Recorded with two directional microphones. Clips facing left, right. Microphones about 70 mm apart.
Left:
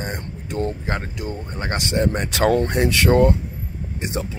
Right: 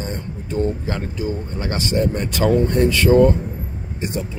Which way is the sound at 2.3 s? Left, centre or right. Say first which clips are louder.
Right 2 dB; left.